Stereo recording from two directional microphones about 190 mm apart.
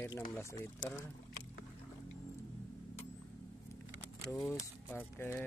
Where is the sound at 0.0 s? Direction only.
15° left (ahead or behind).